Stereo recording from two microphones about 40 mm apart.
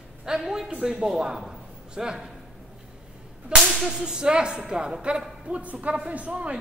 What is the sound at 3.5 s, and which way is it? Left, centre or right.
Whip, right.